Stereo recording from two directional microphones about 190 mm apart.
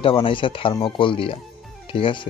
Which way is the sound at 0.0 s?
30° left (ahead or behind).